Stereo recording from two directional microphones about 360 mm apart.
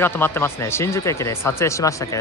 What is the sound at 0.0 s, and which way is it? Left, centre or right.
Speech, centre.